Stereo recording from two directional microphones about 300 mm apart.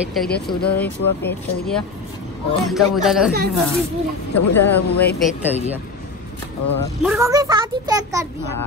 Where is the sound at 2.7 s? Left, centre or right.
Centre.